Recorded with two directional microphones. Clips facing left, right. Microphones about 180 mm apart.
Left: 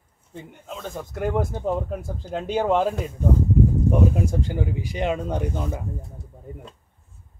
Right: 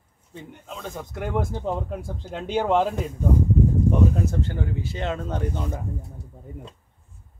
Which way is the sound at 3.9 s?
10° left (ahead or behind).